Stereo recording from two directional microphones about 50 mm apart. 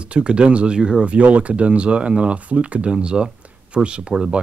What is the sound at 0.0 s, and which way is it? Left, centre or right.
Speech, right.